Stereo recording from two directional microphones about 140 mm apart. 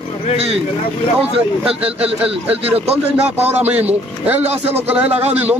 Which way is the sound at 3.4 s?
10° right (ahead or behind).